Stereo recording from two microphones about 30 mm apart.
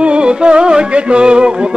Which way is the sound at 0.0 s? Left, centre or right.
Right.